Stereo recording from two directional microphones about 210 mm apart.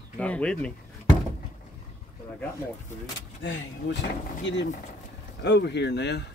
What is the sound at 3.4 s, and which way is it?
Speech, 55° left (ahead or behind).